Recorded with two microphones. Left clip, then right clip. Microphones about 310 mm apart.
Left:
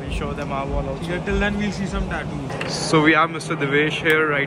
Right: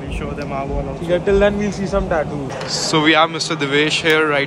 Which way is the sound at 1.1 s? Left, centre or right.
Centre.